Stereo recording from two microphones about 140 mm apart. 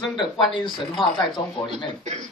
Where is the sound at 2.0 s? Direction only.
55° right (ahead or behind).